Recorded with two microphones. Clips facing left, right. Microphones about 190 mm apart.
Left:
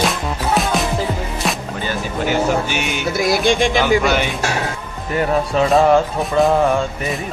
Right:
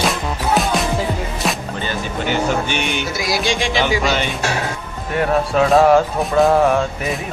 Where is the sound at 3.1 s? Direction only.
55° left (ahead or behind).